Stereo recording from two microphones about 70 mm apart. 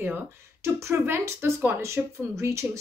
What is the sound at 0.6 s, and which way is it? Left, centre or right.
Speech, right.